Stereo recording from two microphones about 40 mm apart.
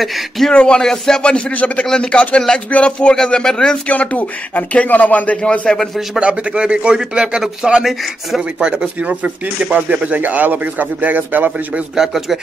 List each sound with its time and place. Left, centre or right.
0.0 s speech: centre
0.5 s speech: left
1.5 s speech: left
2.3 s speech: left
3.8 s speech: left
5.4 s speech: centre
6.1 s a man's voice: right
7.8 s speech: centre
8.4 s a man's voice: right
9.0 s speech: right
11.9 s speech: centre